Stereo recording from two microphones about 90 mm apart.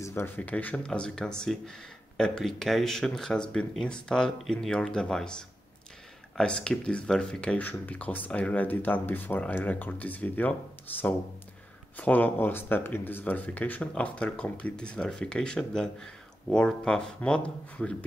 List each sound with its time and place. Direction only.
0.0 s speech: 25° left (ahead or behind); by 5.3 s 10° left (ahead or behind)
6.3 s speech: 10° left (ahead or behind)